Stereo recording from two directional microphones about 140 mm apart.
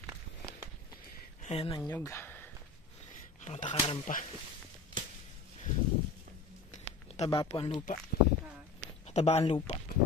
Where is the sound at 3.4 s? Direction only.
55° left (ahead or behind).